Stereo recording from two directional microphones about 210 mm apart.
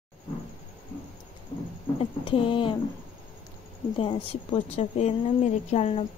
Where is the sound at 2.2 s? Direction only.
25° left (ahead or behind).